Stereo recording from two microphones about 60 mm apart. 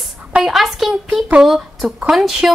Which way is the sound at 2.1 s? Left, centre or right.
Centre.